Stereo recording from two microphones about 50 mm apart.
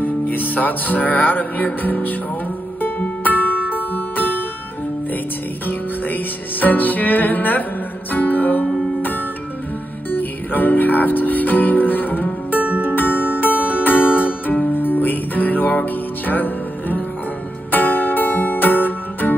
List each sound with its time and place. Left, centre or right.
0.0 s music: left
5.7 s music: left